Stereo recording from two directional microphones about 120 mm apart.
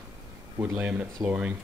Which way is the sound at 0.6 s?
10° right (ahead or behind).